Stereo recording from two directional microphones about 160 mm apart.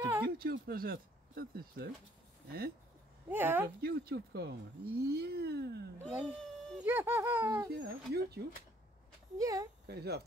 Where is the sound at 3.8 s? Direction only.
75° right (ahead or behind).